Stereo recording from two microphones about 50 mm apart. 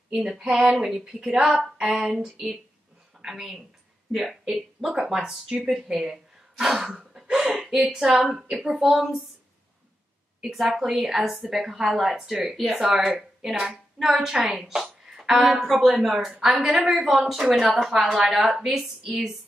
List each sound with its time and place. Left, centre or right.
0.1 s a woman's voice: centre
10.6 s a woman's voice: centre
17.0 s a woman's voice: centre